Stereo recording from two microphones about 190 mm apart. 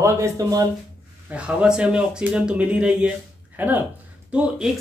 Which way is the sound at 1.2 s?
5° right (ahead or behind).